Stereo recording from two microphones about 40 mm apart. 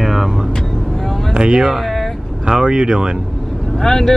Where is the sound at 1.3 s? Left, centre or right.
Right.